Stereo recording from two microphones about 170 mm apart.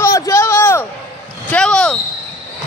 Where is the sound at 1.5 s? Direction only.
5° left (ahead or behind).